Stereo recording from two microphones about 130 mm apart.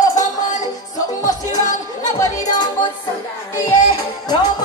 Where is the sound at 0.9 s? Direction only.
30° left (ahead or behind).